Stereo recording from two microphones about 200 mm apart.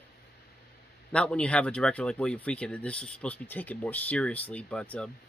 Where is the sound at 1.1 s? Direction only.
5° left (ahead or behind).